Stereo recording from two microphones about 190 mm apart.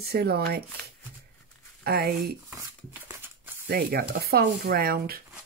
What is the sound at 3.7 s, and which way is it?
Speech, 55° right (ahead or behind).